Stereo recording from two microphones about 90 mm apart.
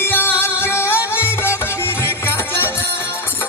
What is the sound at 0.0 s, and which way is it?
Music, 25° left (ahead or behind).